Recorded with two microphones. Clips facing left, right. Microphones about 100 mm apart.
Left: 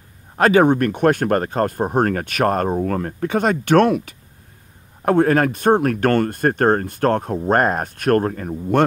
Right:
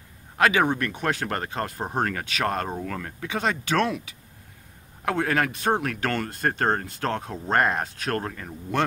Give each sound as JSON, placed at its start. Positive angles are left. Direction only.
{"t": 0.4, "sound": "speech", "side_deg": 40}
{"t": 5.0, "sound": "speech", "side_deg": 40}